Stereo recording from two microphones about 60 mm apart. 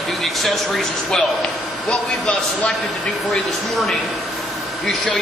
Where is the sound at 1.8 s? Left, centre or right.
Centre.